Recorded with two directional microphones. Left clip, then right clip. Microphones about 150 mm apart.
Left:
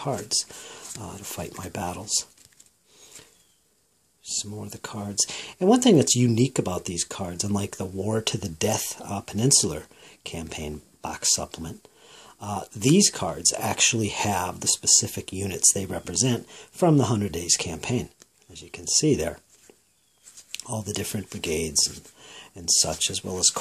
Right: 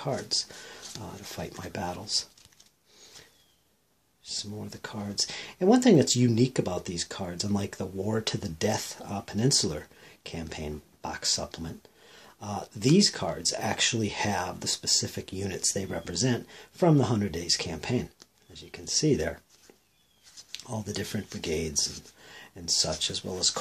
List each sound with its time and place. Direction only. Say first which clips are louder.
0.0 s speech: left 2 dB; 35° left (ahead or behind)
4.2 s speech: left 4 dB; 35° left (ahead or behind)
20.5 s speech: left 4 dB; 35° left (ahead or behind)